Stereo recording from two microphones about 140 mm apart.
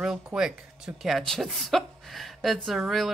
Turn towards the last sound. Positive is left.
turn(degrees=0)  # may be behind; listen again after turning